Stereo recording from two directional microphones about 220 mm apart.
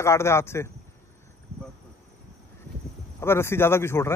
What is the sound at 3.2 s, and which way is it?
Speech, 10° left (ahead or behind).